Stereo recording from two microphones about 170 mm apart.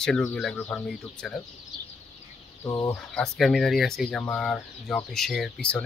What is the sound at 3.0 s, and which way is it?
Speech, 5° left (ahead or behind).